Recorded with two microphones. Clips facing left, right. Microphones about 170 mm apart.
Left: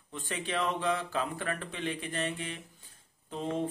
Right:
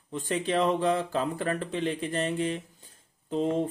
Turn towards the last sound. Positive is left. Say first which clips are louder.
# right 8 dB
turn(degrees=-35)  # may be behind; listen again after turning